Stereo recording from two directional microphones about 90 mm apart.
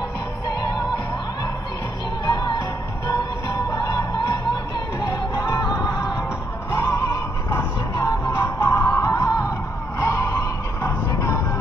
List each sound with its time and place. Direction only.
0.5 s music: 45° left (ahead or behind)
2.2 s music: 45° left (ahead or behind)
7.9 s music: 50° left (ahead or behind)
8.3 s music: 35° left (ahead or behind)
8.8 s music: 45° left (ahead or behind)
9.9 s vehicle: 35° left (ahead or behind)